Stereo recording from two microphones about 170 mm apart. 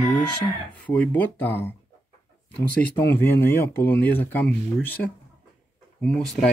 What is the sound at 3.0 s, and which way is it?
Speech, 15° left (ahead or behind).